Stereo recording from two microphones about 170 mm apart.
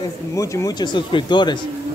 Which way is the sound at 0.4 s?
20° left (ahead or behind).